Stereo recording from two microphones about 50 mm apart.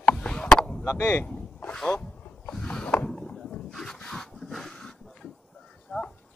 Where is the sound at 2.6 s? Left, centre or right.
Left.